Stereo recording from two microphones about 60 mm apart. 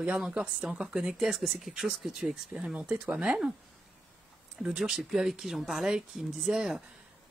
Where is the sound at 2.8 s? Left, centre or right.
Right.